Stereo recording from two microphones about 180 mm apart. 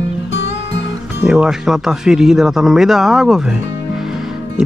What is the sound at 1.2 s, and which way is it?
Speech, centre (ahead or behind).